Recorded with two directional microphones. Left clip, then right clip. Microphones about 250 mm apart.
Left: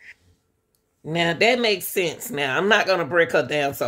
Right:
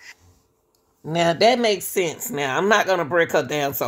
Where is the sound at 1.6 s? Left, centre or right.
Centre.